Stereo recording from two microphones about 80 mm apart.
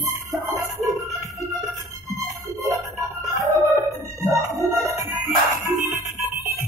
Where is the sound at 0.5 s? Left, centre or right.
Right.